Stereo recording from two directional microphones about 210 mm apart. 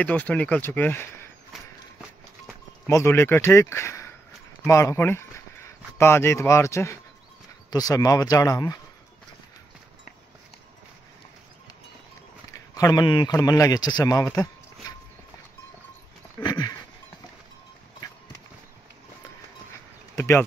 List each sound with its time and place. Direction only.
0.0 s speech: 5° left (ahead or behind)
2.9 s speech: 10° left (ahead or behind)
12.7 s a man's voice: 20° left (ahead or behind)
16.4 s a sound: 20° left (ahead or behind)
20.2 s insect: 10° left (ahead or behind)